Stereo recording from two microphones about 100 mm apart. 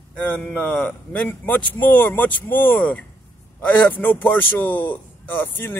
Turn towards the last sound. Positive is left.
turn(degrees=20)  # may be behind; listen again after turning